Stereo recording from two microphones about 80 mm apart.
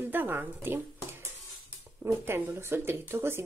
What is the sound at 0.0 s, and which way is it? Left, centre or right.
Speech, right.